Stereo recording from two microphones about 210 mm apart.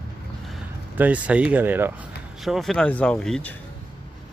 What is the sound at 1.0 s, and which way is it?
Speech, 5° right (ahead or behind).